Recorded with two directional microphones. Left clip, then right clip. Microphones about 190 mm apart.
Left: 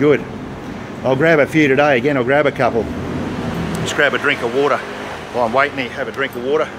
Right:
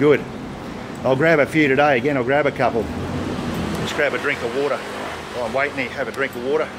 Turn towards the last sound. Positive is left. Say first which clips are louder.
# left 3 dB
turn(degrees=5)  # may be behind; listen again after turning